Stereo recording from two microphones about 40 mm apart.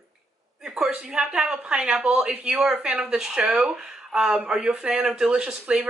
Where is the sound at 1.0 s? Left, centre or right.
Right.